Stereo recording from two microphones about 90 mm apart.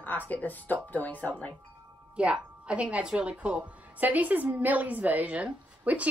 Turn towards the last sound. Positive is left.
turn(degrees=-15)  # may be behind; listen again after turning